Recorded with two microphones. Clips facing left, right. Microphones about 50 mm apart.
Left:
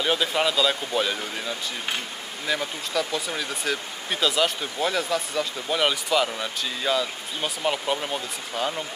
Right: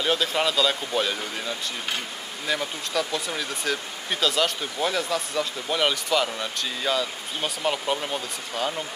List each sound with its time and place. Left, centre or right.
0.0 s speech: centre